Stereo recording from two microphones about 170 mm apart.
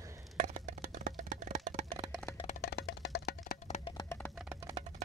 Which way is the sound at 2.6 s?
85° left.